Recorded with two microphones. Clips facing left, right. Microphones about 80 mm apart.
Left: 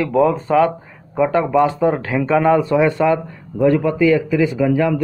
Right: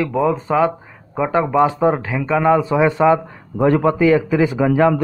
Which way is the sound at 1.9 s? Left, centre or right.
Centre.